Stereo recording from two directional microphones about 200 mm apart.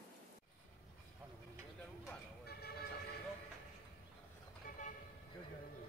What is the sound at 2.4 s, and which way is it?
Vehicle, 50° left (ahead or behind).